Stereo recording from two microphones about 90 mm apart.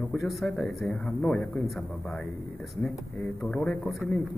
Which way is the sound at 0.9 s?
10° left (ahead or behind).